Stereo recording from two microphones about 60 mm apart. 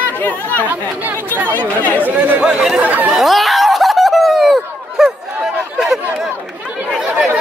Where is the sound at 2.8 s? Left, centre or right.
Right.